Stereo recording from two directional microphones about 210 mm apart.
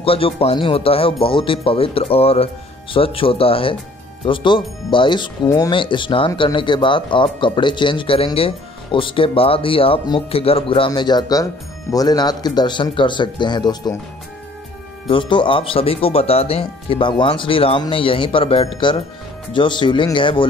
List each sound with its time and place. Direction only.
0.0 s speech: 25° left (ahead or behind)
15.0 s speech: 25° left (ahead or behind)